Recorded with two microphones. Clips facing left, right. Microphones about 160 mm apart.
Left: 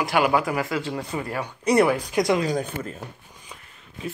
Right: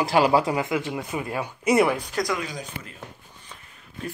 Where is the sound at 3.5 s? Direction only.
10° left (ahead or behind).